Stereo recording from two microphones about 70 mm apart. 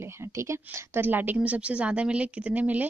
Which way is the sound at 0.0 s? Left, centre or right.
Right.